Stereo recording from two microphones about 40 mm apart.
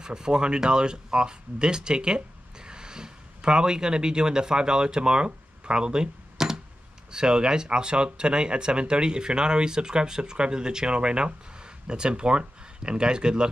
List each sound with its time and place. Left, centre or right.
0.0 s speech: centre